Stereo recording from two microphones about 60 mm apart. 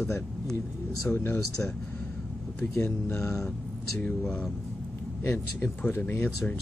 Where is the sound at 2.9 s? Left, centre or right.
Left.